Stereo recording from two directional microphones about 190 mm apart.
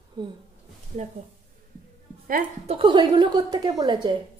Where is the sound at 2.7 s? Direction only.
25° right (ahead or behind).